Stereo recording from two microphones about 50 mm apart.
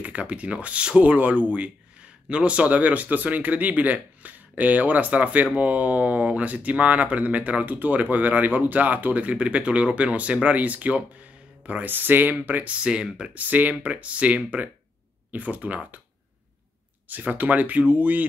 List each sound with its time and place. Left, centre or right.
0.0 s speech: right
11.9 s speech: right
12.8 s speech: centre
13.3 s speech: right
17.1 s speech: right